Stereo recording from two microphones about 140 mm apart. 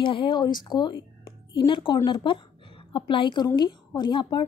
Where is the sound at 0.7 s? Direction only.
35° left (ahead or behind).